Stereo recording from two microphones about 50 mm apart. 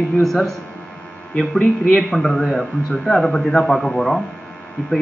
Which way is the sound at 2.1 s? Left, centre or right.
Centre.